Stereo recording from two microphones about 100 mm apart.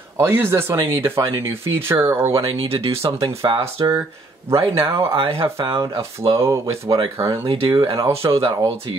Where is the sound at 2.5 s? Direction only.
70° right (ahead or behind).